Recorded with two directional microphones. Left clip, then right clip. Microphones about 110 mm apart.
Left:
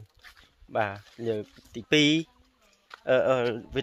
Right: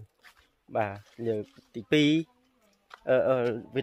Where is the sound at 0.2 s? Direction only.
Centre (ahead or behind).